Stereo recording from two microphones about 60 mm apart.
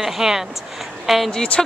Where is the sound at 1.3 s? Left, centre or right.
Centre.